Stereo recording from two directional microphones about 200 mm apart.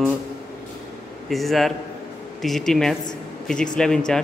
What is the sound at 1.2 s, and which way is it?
Speech, centre (ahead or behind).